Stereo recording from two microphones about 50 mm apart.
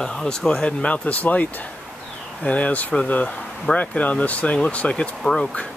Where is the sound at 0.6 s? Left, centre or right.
Left.